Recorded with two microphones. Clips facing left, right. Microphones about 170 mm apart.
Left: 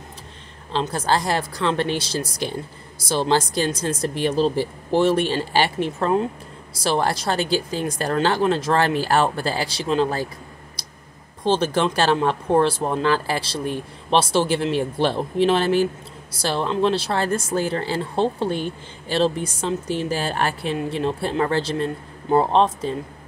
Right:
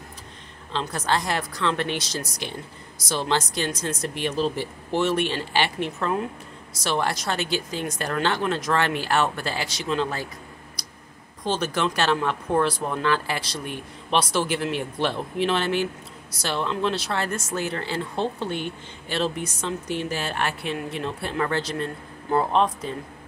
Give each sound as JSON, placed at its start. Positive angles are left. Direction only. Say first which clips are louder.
{"t": 0.7, "sound": "speech", "louder": "left 4 dB", "side_deg": 35}
{"t": 10.8, "sound": "clicking", "louder": "even", "side_deg": 30}
{"t": 11.4, "sound": "speech", "louder": "left 5 dB", "side_deg": 30}